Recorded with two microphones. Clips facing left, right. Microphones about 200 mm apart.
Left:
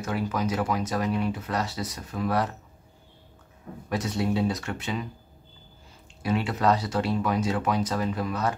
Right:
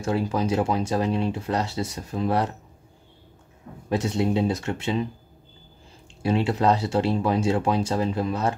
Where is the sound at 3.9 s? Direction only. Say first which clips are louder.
Right 4 dB; 25° right (ahead or behind).